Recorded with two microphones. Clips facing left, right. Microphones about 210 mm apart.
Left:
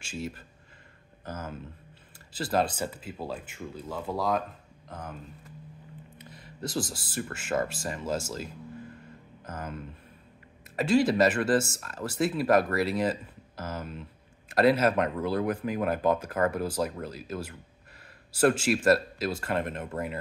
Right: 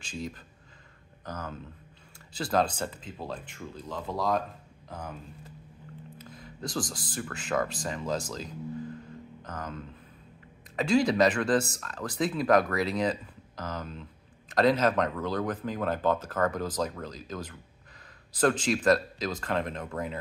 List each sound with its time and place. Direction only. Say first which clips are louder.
0.0 s speech: left 1 dB; 5° left (ahead or behind)
6.3 s a man's voice: left 2 dB; 5° left (ahead or behind)
10.8 s speech: left 1 dB; 5° left (ahead or behind)
12.7 s a sound: left 1 dB; 5° left (ahead or behind)
14.5 s speech: left 1 dB; 10° left (ahead or behind)